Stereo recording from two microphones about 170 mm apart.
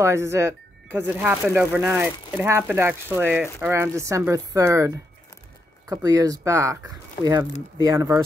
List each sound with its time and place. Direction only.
0.0 s speech: 15° right (ahead or behind)